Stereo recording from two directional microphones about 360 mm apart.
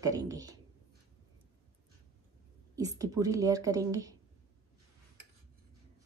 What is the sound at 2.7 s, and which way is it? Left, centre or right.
Speech, centre.